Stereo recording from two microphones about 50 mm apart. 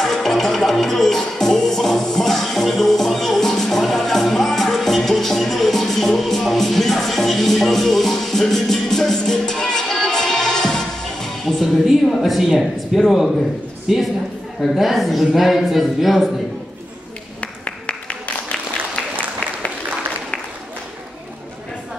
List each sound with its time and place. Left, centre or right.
0.0 s music: centre
12.1 s a woman's voice: centre
17.4 s a sound: left